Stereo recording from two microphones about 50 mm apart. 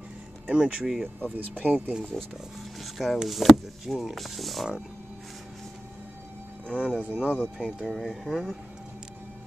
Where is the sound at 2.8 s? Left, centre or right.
Centre.